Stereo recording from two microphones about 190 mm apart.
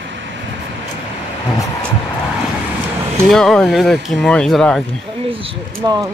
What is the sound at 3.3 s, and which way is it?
Speech, centre (ahead or behind).